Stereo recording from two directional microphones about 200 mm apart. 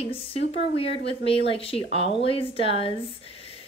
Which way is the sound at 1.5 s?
30° left (ahead or behind).